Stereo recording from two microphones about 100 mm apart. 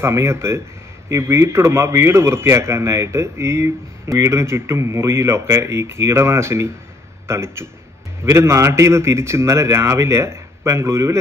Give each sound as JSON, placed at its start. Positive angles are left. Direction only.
{"t": 0.0, "sound": "a man's voice", "side_deg": -30}